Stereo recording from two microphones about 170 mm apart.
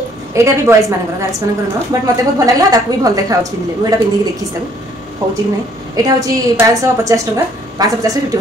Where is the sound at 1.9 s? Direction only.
20° right (ahead or behind).